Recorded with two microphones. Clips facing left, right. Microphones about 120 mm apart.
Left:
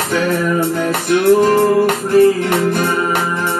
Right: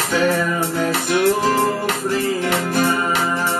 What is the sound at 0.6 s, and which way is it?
Music, 55° left (ahead or behind).